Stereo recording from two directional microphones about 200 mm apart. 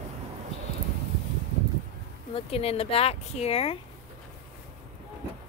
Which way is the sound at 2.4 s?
30° left (ahead or behind).